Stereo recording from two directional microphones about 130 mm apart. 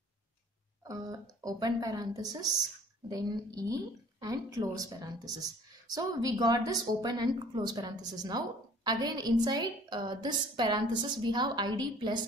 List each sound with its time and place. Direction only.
0.8 s a woman's voice: 30° right (ahead or behind)